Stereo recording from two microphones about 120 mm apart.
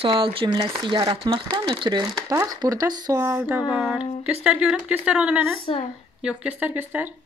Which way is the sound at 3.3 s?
10° right (ahead or behind).